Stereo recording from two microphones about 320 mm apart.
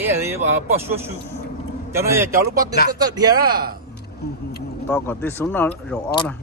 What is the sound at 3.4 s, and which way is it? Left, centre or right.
Speech, right.